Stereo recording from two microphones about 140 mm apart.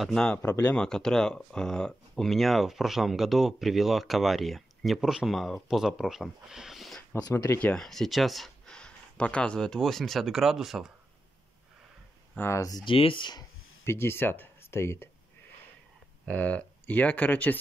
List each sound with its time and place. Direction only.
0.0 s speech: 5° left (ahead or behind)
7.2 s speech: 25° left (ahead or behind)
7.5 s speech: 5° left (ahead or behind)
12.4 s speech: 20° left (ahead or behind)
12.9 s speech: 40° left (ahead or behind)
13.8 s speech: 15° left (ahead or behind)
16.3 s speech: 10° left (ahead or behind)